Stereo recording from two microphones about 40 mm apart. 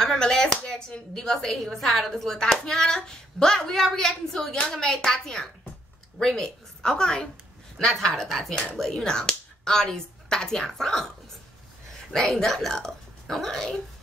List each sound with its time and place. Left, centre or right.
0.0 s speech: centre
8.3 s speech: centre
12.1 s speech: centre